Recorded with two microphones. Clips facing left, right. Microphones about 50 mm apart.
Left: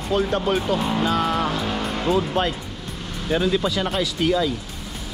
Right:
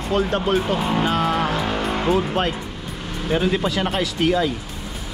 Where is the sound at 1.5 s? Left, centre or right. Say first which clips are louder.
Right 3 dB; centre.